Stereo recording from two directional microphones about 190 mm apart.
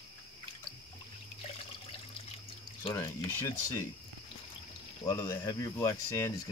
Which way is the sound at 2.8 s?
20° left (ahead or behind).